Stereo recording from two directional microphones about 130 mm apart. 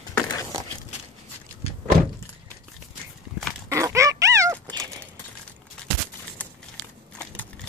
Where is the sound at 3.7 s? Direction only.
25° right (ahead or behind).